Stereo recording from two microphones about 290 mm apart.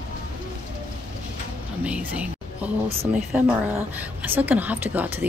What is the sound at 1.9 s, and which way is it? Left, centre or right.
Music, centre.